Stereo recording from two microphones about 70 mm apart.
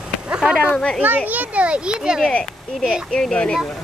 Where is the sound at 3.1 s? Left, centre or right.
Centre.